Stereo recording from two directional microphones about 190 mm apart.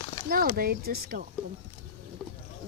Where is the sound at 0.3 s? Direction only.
50° right (ahead or behind).